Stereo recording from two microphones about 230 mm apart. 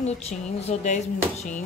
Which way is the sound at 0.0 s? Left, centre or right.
Left.